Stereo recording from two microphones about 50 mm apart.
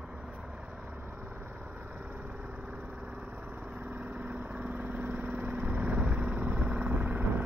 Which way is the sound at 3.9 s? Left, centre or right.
Right.